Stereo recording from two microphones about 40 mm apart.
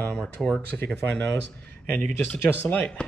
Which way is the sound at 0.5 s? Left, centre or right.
Left.